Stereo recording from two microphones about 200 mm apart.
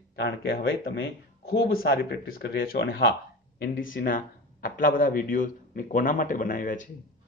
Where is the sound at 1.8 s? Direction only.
50° left (ahead or behind).